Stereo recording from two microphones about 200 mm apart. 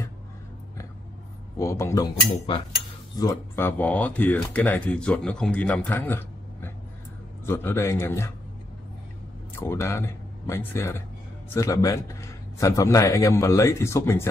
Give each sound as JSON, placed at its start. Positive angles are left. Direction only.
{"t": 1.6, "sound": "speech", "side_deg": 15}
{"t": 3.2, "sound": "speech", "side_deg": 15}
{"t": 9.6, "sound": "speech", "side_deg": 15}